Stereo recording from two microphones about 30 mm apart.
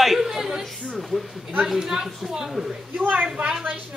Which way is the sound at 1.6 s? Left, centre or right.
Centre.